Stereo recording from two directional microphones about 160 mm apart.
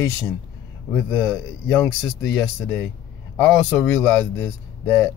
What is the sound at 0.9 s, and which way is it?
A man's voice, 15° left (ahead or behind).